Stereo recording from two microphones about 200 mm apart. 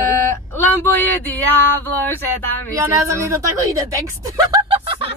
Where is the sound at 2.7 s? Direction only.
15° right (ahead or behind).